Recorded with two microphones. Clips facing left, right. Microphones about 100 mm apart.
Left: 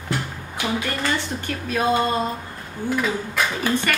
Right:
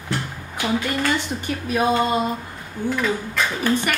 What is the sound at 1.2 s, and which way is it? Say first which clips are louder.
Speech: right 2 dB; 15° right (ahead or behind).